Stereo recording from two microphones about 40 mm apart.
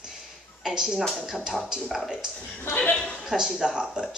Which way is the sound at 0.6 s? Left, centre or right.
Centre.